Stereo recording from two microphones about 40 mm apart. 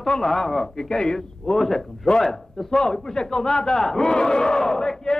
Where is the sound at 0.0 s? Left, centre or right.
Centre.